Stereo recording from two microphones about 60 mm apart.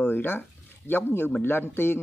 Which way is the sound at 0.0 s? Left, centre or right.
Left.